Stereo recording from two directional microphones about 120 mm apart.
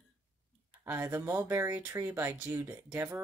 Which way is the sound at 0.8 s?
20° right (ahead or behind).